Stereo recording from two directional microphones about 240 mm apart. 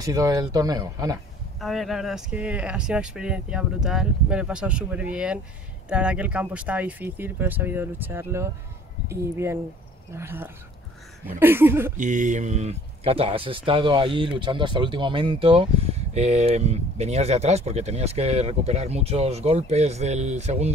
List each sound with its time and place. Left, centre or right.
0.0 s speech: centre
1.6 s speech: centre
12.0 s speech: right